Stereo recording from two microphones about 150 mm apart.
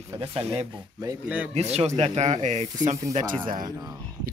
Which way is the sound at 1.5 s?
45° right (ahead or behind).